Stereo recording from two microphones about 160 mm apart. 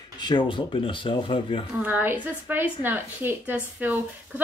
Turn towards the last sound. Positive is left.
turn(degrees=-10)  # may be behind; listen again after turning